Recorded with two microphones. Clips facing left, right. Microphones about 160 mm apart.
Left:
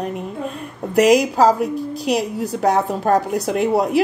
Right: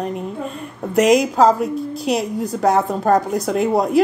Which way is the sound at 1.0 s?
Centre (ahead or behind).